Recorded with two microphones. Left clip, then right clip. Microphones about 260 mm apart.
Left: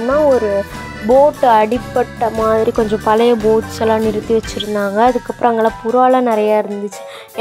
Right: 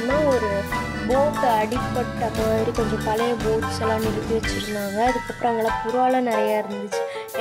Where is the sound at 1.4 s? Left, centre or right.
Centre.